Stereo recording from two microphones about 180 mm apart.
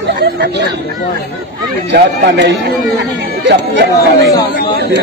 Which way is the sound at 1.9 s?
75° right (ahead or behind).